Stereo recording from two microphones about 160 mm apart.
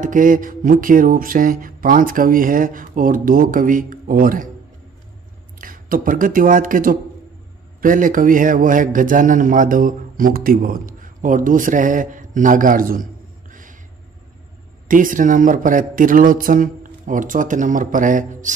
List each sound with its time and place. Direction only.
0.0 s a man's voice: 55° right (ahead or behind)
5.6 s a man's voice: 60° right (ahead or behind)
13.5 s a sound: 55° right (ahead or behind)
14.9 s a man's voice: 55° right (ahead or behind)